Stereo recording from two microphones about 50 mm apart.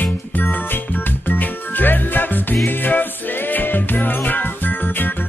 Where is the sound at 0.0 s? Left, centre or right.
Left.